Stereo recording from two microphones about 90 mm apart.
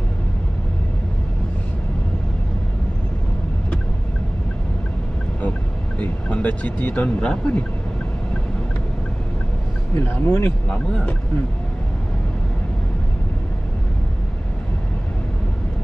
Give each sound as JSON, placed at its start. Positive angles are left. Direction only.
{"t": 5.9, "sound": "speech", "side_deg": 15}
{"t": 9.9, "sound": "speech", "side_deg": 25}